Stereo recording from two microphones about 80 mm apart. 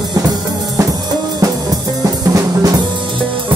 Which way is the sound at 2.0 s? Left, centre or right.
Right.